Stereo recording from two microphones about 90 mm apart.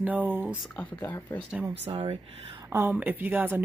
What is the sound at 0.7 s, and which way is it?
Speech, 20° left (ahead or behind).